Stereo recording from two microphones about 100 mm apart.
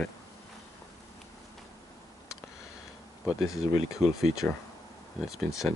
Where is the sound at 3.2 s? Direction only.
5° right (ahead or behind).